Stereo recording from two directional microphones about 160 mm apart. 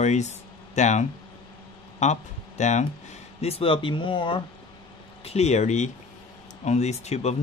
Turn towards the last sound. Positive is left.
turn(degrees=45)  # may be behind; listen again after turning